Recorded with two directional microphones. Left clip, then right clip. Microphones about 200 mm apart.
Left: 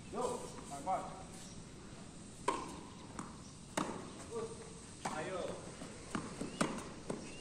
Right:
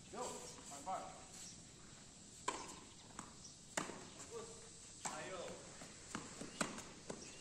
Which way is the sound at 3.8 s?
15° left (ahead or behind).